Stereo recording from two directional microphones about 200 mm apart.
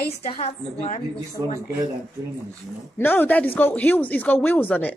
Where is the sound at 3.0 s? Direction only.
10° left (ahead or behind).